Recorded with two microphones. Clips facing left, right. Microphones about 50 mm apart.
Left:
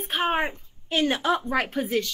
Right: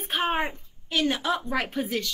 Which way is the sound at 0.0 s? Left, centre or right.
Centre.